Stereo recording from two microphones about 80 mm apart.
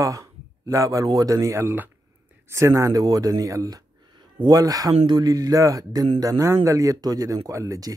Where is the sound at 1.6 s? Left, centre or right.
Right.